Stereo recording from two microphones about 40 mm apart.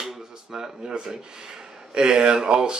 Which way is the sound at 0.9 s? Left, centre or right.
Right.